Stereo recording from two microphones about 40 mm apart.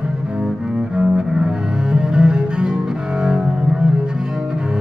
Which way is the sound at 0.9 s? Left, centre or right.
Right.